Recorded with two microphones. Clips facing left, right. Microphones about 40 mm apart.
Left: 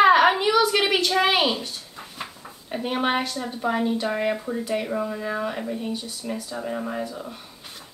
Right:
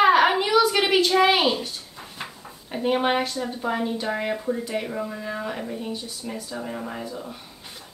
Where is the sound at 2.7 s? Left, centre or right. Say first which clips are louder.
Right 2 dB; centre.